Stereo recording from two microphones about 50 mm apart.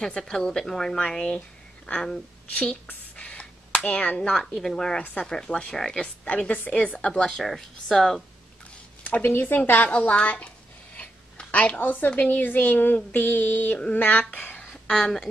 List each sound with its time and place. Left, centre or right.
0.0 s speech: centre
2.9 s a sound: left
4.6 s speech: centre
6.2 s a woman's voice: left
7.2 s speech: centre
9.0 s speech: left
9.8 s a woman's voice: left
14.3 s speech: left
14.9 s speech: centre